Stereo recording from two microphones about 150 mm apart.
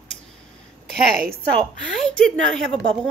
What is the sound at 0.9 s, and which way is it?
Speech, 90° right.